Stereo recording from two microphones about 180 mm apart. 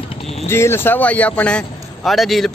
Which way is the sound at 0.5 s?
15° left (ahead or behind).